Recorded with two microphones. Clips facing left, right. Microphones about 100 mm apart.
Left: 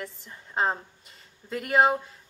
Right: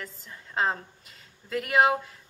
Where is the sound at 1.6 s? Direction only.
Centre (ahead or behind).